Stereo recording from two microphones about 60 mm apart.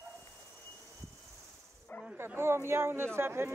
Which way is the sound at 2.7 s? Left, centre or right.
Right.